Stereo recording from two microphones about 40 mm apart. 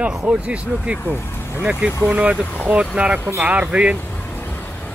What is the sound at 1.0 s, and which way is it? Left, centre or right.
Speech, left.